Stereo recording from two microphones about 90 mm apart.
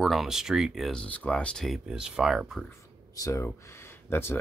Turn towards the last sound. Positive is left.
turn(degrees=25)  # may be behind; listen again after turning